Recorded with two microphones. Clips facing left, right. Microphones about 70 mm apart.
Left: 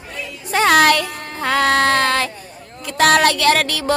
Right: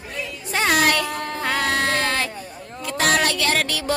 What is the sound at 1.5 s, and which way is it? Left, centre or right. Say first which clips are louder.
Child singing: left 7 dB; left.